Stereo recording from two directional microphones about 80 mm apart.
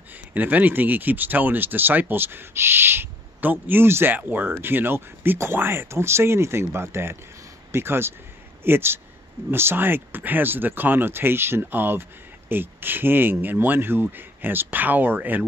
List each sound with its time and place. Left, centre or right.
0.3 s speech: right